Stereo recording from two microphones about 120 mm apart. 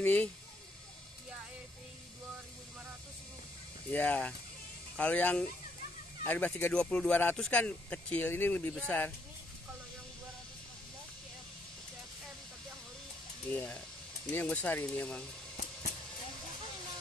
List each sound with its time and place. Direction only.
0.0 s speech: 15° left (ahead or behind)
3.9 s speech: 10° left (ahead or behind)
13.5 s speech: 10° left (ahead or behind)